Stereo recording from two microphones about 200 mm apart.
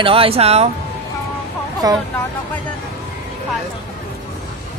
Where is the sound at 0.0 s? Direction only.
25° right (ahead or behind).